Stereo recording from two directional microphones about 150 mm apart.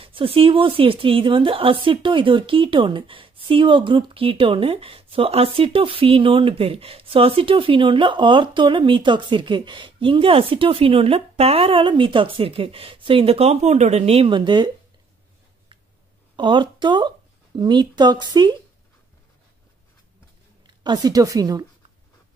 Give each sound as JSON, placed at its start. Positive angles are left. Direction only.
{"t": 0.0, "sound": "a woman's voice", "side_deg": -35}
{"t": 16.3, "sound": "a woman's voice", "side_deg": -30}
{"t": 20.6, "sound": "a woman's voice", "side_deg": -30}